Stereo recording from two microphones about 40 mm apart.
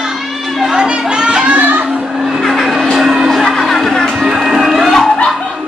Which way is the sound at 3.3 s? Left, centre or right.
Centre.